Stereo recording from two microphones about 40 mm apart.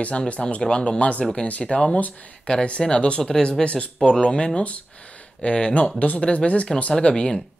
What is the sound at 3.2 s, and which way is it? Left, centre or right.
Speech, centre.